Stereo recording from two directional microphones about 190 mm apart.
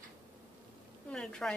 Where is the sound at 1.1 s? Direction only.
5° left (ahead or behind).